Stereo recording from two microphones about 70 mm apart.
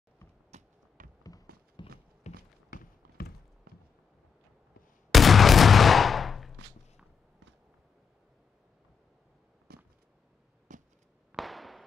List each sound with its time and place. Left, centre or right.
1.8 s clip-clop: left
5.1 s gunshot: centre
11.3 s firecracker: centre